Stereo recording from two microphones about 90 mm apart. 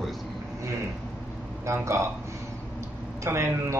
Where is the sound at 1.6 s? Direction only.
30° right (ahead or behind).